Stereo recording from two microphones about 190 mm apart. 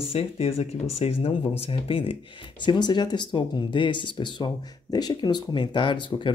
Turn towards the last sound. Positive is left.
turn(degrees=25)  # may be behind; listen again after turning